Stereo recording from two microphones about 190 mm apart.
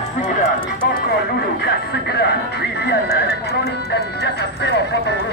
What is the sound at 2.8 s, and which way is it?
Speech, 60° left (ahead or behind).